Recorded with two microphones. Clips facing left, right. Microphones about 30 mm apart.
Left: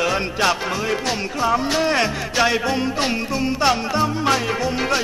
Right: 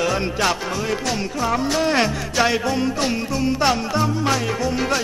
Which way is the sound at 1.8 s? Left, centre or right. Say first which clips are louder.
Even; centre.